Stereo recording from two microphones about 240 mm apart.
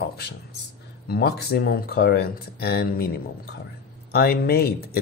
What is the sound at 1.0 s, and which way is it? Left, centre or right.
Speech, left.